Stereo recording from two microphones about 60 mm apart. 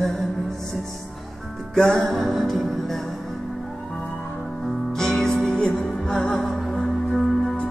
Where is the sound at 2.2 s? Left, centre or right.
Centre.